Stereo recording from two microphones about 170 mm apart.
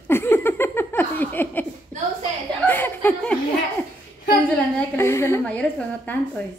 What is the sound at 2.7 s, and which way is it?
Chuckle, 10° left (ahead or behind).